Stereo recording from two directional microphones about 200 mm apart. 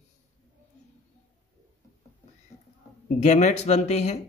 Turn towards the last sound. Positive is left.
turn(degrees=35)  # may be behind; listen again after turning